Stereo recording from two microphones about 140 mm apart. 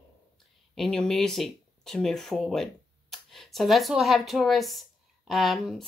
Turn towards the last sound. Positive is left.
turn(degrees=0)  # may be behind; listen again after turning